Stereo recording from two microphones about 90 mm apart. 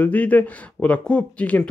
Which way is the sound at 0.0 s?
15° left (ahead or behind).